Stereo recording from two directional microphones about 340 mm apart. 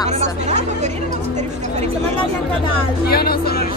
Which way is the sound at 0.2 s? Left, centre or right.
Centre.